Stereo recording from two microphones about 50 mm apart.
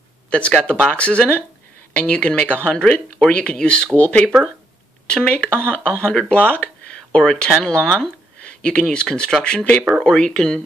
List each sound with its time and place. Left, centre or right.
0.3 s speech: left